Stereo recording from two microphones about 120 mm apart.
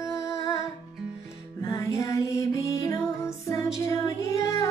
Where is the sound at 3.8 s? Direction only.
25° left (ahead or behind).